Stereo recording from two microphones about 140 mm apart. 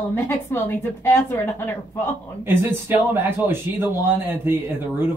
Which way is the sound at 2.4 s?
15° right (ahead or behind).